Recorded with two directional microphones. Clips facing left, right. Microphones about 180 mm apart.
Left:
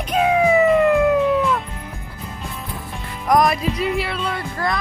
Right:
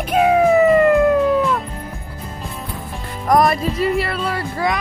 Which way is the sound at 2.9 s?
Centre (ahead or behind).